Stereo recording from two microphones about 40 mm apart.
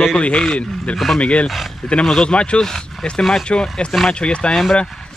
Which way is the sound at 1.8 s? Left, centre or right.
Centre.